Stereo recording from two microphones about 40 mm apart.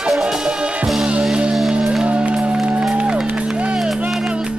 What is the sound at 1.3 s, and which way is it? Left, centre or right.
Music, right.